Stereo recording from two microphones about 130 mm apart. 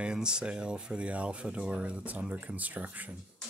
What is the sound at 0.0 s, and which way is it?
Speech, 5° right (ahead or behind).